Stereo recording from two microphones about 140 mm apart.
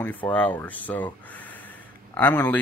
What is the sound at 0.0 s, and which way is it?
A man's voice, 10° left (ahead or behind).